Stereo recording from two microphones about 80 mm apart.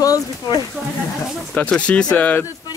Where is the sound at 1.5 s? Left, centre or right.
Centre.